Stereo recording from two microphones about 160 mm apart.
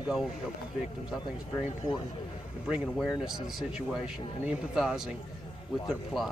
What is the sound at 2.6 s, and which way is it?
Speech, 5° right (ahead or behind).